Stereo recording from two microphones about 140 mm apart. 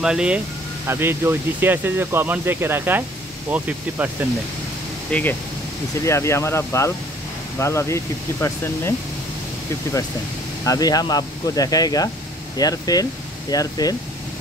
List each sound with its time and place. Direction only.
0.0 s speech: 5° right (ahead or behind)
5.1 s speech: 10° left (ahead or behind)
6.0 s speech: 20° left (ahead or behind)
10.6 s speech: 25° left (ahead or behind)